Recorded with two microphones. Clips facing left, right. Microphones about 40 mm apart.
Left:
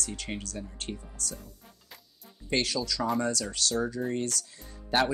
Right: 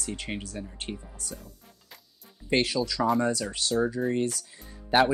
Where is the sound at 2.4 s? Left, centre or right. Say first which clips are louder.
Right 4 dB; centre.